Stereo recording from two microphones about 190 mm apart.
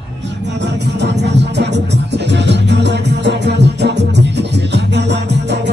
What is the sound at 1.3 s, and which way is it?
Music, 65° right (ahead or behind).